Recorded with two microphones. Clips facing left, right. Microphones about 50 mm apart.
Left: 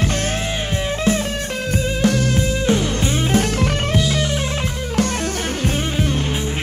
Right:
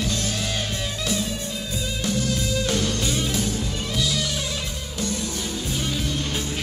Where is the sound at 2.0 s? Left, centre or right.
Left.